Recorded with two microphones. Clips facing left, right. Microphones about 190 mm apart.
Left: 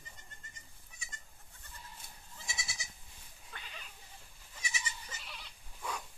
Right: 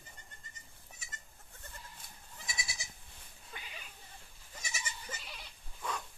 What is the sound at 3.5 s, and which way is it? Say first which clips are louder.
Sheep: right 2 dB; 10° right (ahead or behind).